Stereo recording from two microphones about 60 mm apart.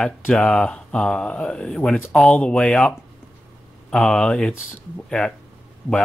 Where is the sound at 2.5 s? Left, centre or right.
Centre.